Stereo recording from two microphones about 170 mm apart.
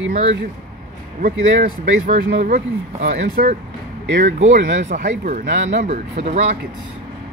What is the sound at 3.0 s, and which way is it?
Speech, 60° right (ahead or behind).